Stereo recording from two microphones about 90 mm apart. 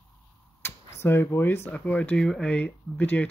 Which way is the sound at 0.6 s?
25° left (ahead or behind).